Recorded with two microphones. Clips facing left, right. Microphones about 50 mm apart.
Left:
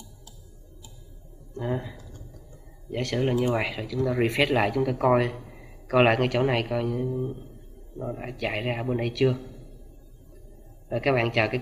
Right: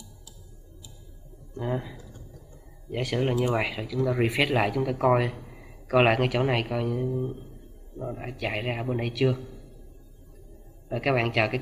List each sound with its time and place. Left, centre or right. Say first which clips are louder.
1.6 s a man's voice: even; centre
10.9 s speech: left 1 dB; centre